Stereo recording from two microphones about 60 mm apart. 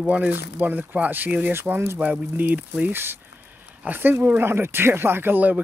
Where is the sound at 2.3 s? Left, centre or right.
Right.